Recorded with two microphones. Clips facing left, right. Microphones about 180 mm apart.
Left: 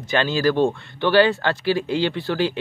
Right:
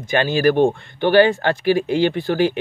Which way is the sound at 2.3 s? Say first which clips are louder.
Right 4 dB; 55° right (ahead or behind).